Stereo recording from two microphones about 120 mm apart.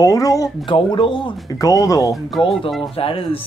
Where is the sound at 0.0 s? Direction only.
30° left (ahead or behind).